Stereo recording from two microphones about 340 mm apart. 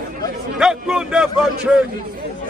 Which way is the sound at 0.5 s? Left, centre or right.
Centre.